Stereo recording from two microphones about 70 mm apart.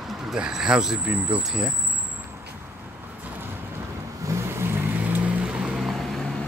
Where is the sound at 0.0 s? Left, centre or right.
Centre.